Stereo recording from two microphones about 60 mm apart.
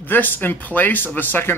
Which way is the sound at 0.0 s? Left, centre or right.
Left.